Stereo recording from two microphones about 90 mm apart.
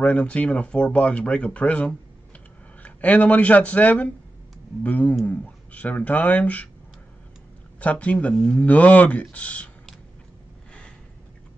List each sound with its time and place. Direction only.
0.0 s speech: 15° left (ahead or behind)
7.8 s speech: 15° left (ahead or behind)